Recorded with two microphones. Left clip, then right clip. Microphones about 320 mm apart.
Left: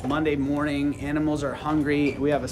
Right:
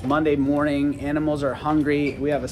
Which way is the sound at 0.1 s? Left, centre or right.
Centre.